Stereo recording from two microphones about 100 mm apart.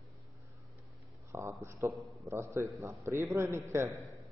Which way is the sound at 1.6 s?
30° right (ahead or behind).